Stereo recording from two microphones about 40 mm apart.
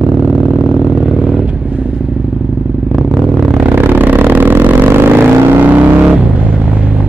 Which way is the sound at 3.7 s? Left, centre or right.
Right.